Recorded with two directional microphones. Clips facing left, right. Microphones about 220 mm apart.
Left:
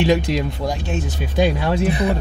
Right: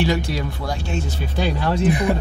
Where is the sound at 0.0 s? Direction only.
20° left (ahead or behind).